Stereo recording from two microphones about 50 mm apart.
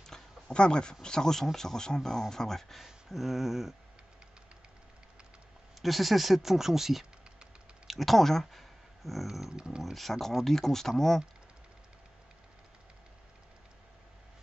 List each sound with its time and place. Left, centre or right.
0.5 s speech: centre
2.8 s a sound: centre
5.8 s speech: centre
9.6 s speech: centre
9.8 s speech: centre